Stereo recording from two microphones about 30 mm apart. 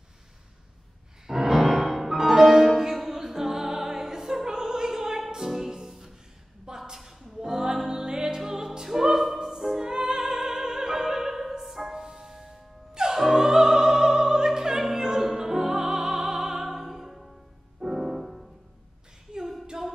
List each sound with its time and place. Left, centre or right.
1.2 s music: centre
4.5 s opera: right
5.5 s music: centre
7.0 s a sound: centre
7.4 s music: right
9.6 s music: centre
9.8 s opera: right
12.0 s music: right
13.3 s opera: right
15.2 s music: centre